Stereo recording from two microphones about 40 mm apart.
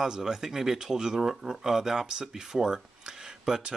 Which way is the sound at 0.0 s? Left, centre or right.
Centre.